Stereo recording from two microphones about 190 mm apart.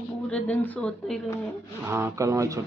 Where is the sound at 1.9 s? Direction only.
15° right (ahead or behind).